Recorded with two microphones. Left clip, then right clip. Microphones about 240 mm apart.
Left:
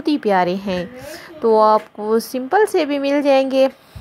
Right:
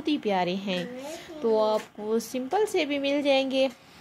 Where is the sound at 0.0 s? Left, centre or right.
Left.